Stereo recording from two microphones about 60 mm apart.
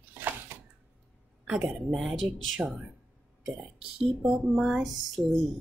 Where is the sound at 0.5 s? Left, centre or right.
Right.